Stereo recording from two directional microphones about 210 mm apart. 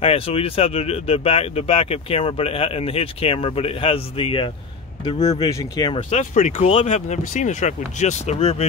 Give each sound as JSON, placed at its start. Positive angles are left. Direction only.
{"t": 0.0, "sound": "speech", "side_deg": 25}
{"t": 6.0, "sound": "speech", "side_deg": 35}